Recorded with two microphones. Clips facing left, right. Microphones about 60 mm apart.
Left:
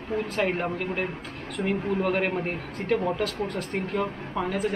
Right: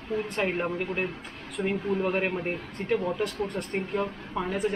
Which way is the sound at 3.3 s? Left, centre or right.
Left.